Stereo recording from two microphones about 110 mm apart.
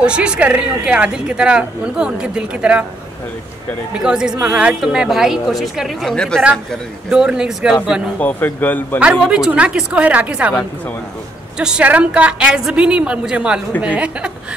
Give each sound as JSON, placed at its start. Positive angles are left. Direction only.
{"t": 0.0, "sound": "a woman's voice", "side_deg": -10}
{"t": 4.0, "sound": "a woman's voice", "side_deg": -5}
{"t": 7.1, "sound": "a woman's voice", "side_deg": -5}
{"t": 8.2, "sound": "speech", "side_deg": 15}
{"t": 9.0, "sound": "a woman's voice", "side_deg": -5}
{"t": 11.5, "sound": "a woman's voice", "side_deg": -10}